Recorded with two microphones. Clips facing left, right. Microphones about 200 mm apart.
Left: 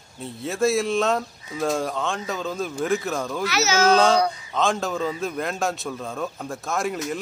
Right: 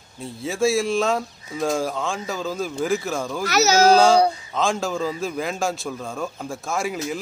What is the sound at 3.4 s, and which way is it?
Speech, 40° right (ahead or behind).